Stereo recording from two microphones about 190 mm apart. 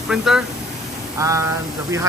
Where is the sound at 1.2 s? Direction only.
15° right (ahead or behind).